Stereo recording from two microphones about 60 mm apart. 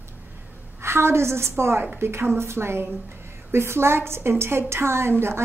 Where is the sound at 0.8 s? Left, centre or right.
Right.